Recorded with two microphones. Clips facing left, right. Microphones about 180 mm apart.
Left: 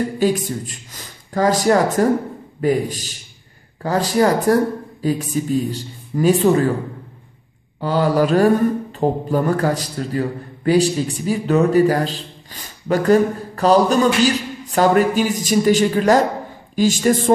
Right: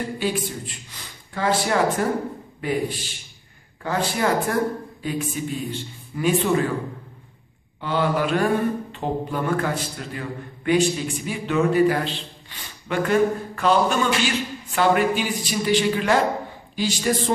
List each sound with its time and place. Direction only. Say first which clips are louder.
0.2 s a man's voice: left 7 dB; 40° left (ahead or behind)
7.8 s a man's voice: left 6 dB; 40° left (ahead or behind)